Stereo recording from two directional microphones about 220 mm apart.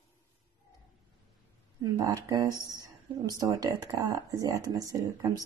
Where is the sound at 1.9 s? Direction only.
20° right (ahead or behind).